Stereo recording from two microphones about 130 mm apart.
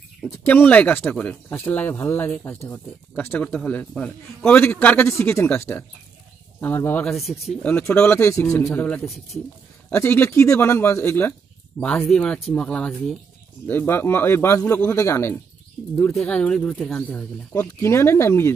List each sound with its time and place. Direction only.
0.5 s speech: 10° left (ahead or behind)
7.1 s speech: centre (ahead or behind)
7.9 s speech: 15° left (ahead or behind)
9.0 s speech: centre (ahead or behind)
9.8 s speech: 15° left (ahead or behind)
12.1 s speech: 5° left (ahead or behind)
16.2 s speech: 5° left (ahead or behind)
17.6 s speech: 20° left (ahead or behind)